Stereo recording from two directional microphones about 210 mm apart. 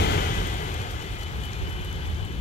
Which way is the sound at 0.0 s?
50° left (ahead or behind).